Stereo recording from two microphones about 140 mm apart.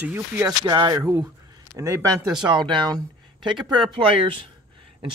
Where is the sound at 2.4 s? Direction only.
35° right (ahead or behind).